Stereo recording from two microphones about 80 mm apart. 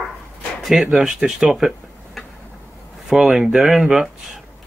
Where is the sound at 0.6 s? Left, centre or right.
Centre.